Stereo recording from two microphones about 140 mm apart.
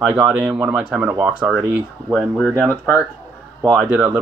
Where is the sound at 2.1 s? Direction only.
5° left (ahead or behind).